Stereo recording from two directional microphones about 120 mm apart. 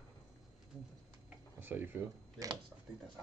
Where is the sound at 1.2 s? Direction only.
15° right (ahead or behind).